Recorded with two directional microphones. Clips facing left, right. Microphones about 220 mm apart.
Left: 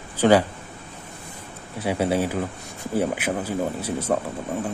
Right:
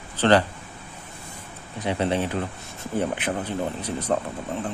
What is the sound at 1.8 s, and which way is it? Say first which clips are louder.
Speech: left 2 dB; 10° left (ahead or behind).